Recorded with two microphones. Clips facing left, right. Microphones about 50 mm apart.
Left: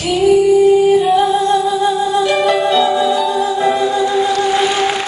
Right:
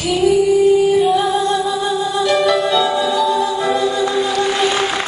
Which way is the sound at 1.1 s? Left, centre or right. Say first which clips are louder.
Left 3 dB; left.